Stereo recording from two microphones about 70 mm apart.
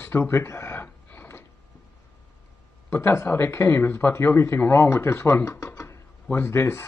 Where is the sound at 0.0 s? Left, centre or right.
Left.